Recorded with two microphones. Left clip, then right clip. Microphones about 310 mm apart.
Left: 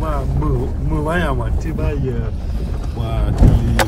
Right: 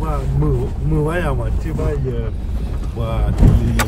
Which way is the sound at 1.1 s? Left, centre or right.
Centre.